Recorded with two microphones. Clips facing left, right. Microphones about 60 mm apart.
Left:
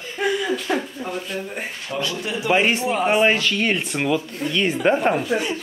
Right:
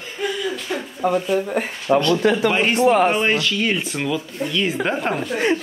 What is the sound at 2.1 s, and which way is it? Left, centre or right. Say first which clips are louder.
Speech: right 10 dB; right.